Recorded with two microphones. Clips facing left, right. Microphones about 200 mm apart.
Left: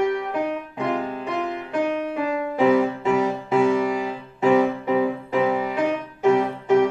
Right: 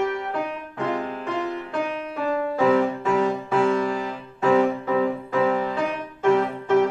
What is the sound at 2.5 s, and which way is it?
Music, 15° left (ahead or behind).